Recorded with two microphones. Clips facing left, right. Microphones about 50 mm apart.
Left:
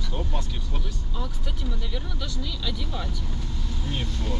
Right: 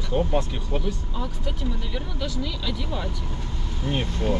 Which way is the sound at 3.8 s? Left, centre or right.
Right.